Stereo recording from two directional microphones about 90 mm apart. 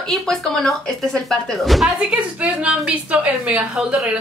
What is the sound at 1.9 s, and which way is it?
A woman's voice, 15° right (ahead or behind).